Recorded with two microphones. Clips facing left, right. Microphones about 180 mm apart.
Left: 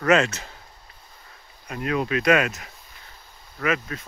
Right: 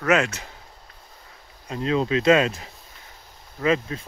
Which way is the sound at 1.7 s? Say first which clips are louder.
Right 2 dB; 25° right (ahead or behind).